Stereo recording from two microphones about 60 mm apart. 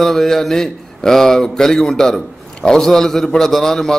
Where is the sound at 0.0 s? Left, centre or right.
Centre.